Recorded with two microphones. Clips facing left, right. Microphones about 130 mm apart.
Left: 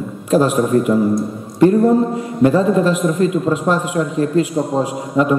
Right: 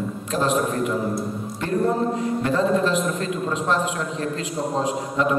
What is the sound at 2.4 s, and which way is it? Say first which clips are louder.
A man's voice: left 8 dB; 10° left (ahead or behind).